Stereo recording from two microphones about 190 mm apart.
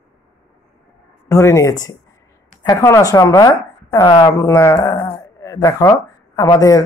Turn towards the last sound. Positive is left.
turn(degrees=20)  # may be behind; listen again after turning